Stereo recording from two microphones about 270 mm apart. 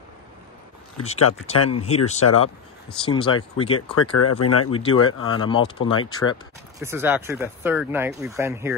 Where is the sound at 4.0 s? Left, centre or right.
Left.